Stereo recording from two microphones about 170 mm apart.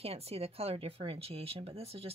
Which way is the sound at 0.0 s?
35° right (ahead or behind).